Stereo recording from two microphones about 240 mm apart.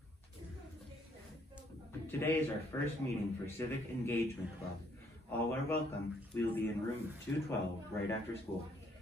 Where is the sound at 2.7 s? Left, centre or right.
Centre.